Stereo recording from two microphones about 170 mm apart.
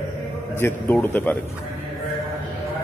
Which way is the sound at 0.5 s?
15° left (ahead or behind).